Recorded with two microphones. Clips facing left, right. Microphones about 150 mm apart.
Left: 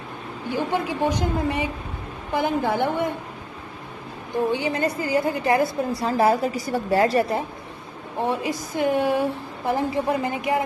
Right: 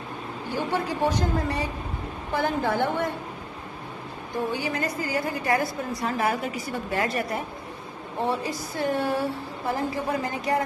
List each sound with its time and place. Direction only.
0.5 s a woman's voice: 15° left (ahead or behind)
4.5 s a woman's voice: 25° left (ahead or behind)
8.2 s a woman's voice: 15° left (ahead or behind)